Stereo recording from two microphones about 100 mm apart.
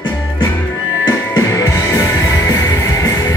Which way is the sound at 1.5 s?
30° left (ahead or behind).